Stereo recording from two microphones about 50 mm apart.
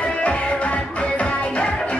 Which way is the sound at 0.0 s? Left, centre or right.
Left.